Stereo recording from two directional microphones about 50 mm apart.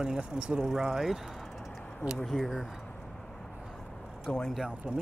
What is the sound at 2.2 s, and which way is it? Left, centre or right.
Speech, centre.